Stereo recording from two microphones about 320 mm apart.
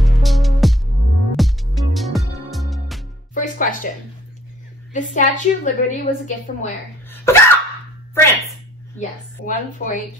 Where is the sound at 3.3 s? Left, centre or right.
Left.